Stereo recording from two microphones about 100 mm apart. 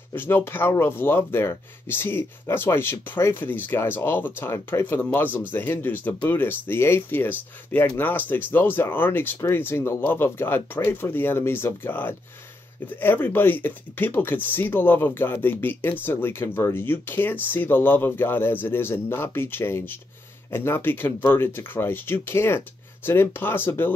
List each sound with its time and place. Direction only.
0.1 s speech: 20° left (ahead or behind)